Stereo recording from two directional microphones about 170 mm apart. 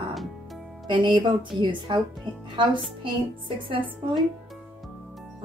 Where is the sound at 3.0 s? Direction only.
30° right (ahead or behind).